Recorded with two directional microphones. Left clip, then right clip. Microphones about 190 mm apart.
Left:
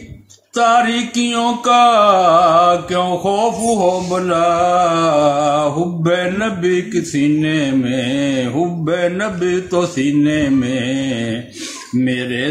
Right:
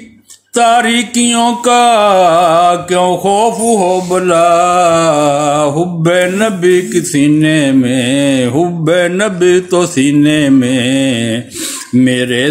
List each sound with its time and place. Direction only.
0.6 s music: 40° right (ahead or behind)